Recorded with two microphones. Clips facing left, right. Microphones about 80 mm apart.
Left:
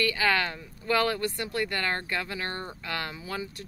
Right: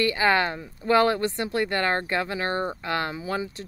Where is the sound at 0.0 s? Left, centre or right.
Right.